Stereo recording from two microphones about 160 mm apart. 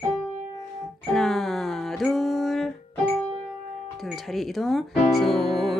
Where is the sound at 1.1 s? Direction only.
Centre (ahead or behind).